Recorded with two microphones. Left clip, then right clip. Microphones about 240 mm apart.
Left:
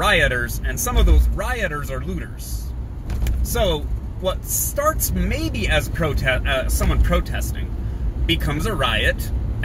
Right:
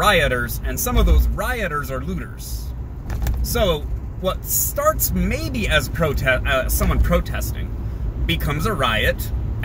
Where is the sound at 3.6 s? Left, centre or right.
Centre.